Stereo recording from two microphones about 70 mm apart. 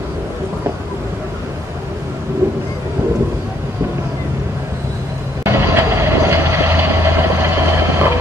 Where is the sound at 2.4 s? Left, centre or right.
Right.